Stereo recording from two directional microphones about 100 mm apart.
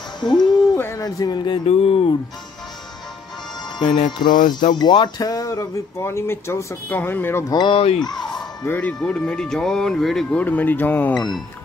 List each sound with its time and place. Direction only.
0.2 s speech: 45° left (ahead or behind)
0.7 s speech: 25° left (ahead or behind)
1.0 s speech: 40° left (ahead or behind)
1.7 s speech: 85° left
3.8 s music: 50° left (ahead or behind); by 7.4 s 20° left (ahead or behind)
7.4 s speech: 45° left (ahead or behind)
7.7 s speech: 90° left
8.6 s speech: 15° left (ahead or behind)
10.4 s music: 20° left (ahead or behind)
11.1 s speech: 5° left (ahead or behind)